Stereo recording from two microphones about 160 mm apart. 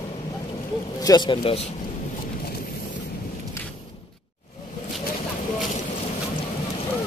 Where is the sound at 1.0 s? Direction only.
25° left (ahead or behind).